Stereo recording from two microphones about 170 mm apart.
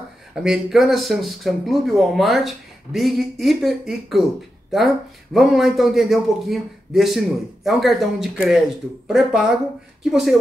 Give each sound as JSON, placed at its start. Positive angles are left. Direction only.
{"t": 0.3, "sound": "speech", "side_deg": -5}